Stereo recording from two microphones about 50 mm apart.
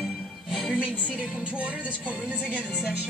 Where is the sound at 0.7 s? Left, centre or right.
Right.